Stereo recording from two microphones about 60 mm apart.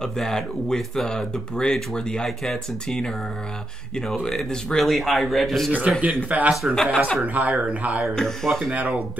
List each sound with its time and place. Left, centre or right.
0.0 s speech: centre
4.2 s speech: centre
4.8 s a man's voice: centre
5.7 s speech: right
6.7 s speech: centre
7.3 s speech: right
8.1 s speech: centre
8.7 s speech: right